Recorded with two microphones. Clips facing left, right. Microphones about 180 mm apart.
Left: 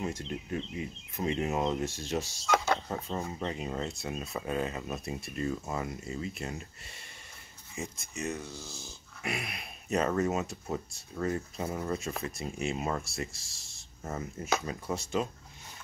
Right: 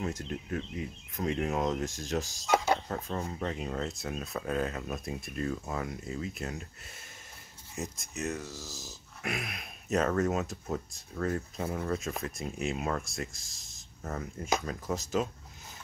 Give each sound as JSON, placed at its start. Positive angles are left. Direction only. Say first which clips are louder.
{"t": 0.1, "sound": "speech", "louder": "even", "side_deg": 0}
{"t": 2.4, "sound": "speech", "louder": "right 2 dB", "side_deg": -15}
{"t": 2.9, "sound": "speech", "louder": "even", "side_deg": 10}
{"t": 7.7, "sound": "speech", "louder": "right 1 dB", "side_deg": 0}
{"t": 8.6, "sound": "dog", "louder": "right 1 dB", "side_deg": -40}
{"t": 9.2, "sound": "speech", "louder": "even", "side_deg": 0}